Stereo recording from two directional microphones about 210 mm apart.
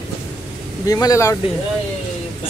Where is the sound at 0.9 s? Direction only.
15° left (ahead or behind).